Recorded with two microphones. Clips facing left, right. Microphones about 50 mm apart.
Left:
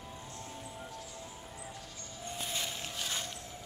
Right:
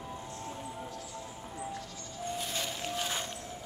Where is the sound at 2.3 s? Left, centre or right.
Centre.